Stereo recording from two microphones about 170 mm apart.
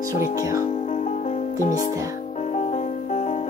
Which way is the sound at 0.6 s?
40° left (ahead or behind).